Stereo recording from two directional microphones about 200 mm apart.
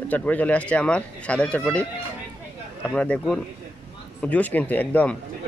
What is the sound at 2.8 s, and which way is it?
Speech, 5° left (ahead or behind).